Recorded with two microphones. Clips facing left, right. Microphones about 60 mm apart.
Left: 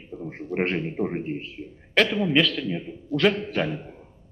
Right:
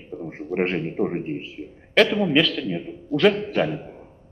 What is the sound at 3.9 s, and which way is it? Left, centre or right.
Music, centre.